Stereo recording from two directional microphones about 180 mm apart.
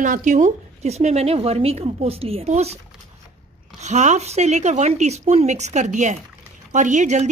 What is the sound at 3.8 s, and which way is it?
A woman's voice, 40° right (ahead or behind).